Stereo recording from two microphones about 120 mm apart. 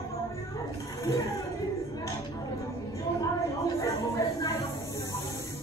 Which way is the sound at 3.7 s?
30° left (ahead or behind).